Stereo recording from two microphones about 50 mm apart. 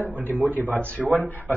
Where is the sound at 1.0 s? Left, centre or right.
Centre.